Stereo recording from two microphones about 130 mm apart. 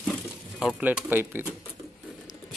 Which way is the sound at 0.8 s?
15° right (ahead or behind).